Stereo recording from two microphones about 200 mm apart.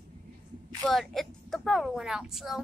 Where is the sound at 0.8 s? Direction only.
Centre (ahead or behind).